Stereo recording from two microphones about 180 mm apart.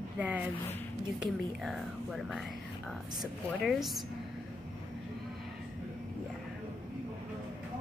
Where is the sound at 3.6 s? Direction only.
Centre (ahead or behind).